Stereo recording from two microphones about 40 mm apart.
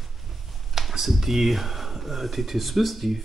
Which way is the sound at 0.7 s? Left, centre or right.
Centre.